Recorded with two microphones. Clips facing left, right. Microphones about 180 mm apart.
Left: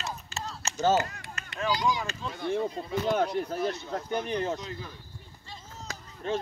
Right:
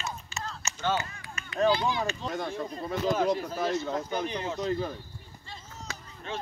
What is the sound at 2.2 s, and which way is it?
Speech, 50° right (ahead or behind).